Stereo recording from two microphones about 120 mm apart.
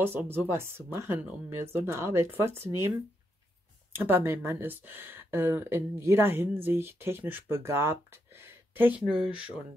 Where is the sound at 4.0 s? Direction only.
15° right (ahead or behind).